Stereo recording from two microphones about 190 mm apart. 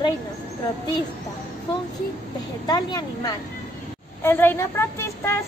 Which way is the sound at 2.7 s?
20° left (ahead or behind).